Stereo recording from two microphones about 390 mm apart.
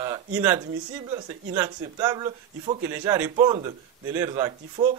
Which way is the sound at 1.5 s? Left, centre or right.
Centre.